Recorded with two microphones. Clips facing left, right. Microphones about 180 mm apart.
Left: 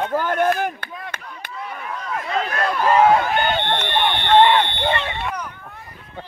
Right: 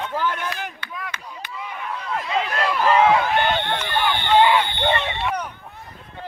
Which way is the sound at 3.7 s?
25° left (ahead or behind).